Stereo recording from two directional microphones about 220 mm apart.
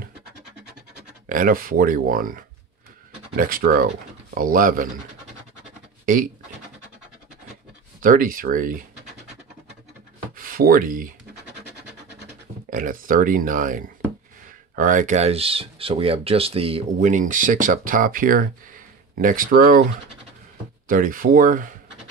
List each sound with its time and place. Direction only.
1.3 s speech: 40° right (ahead or behind)
8.0 s speech: 40° right (ahead or behind)
10.3 s speech: 40° right (ahead or behind)
12.6 s speech: 40° right (ahead or behind)
20.9 s speech: 40° right (ahead or behind)